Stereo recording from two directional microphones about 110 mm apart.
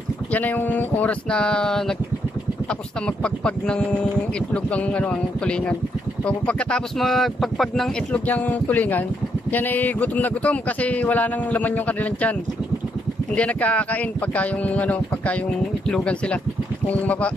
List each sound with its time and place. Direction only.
0.3 s speech: 15° left (ahead or behind)
3.4 s speech: 10° left (ahead or behind)
8.3 s speech: 15° left (ahead or behind)